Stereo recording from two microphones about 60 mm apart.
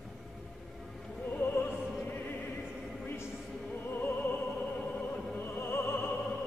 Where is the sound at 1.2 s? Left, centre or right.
Left.